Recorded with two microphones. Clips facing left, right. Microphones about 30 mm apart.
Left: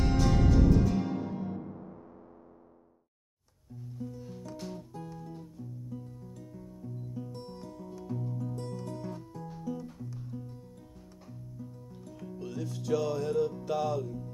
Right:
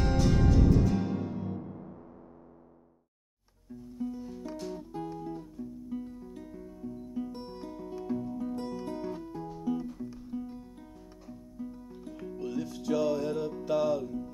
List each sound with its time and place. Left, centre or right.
0.0 s music: centre
4.0 s music: centre
4.6 s music: centre
5.0 s guitar: centre
5.9 s music: right
12.4 s music: centre